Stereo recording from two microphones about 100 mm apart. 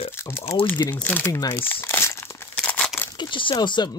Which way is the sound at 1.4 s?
25° left (ahead or behind).